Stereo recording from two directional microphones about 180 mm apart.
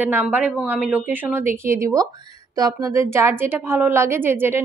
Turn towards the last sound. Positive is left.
turn(degrees=-10)  # may be behind; listen again after turning